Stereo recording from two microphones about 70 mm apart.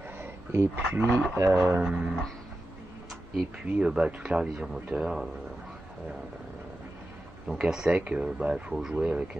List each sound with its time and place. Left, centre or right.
0.2 s a sound: right
1.3 s speech: right
1.8 s speech: centre
3.6 s speech: centre
7.4 s speech: centre